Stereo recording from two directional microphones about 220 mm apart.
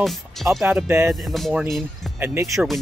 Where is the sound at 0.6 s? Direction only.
10° right (ahead or behind).